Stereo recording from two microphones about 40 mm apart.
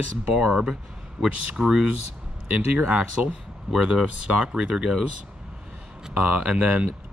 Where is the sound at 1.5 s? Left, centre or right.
Right.